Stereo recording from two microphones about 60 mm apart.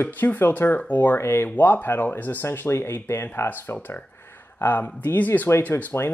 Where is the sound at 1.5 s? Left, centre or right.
Left.